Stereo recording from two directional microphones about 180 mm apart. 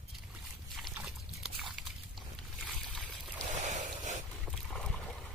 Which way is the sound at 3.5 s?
45° right (ahead or behind).